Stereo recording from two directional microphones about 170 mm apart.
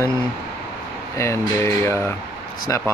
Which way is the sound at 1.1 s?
15° left (ahead or behind).